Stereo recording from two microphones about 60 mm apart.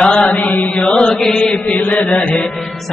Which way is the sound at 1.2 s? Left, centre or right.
Centre.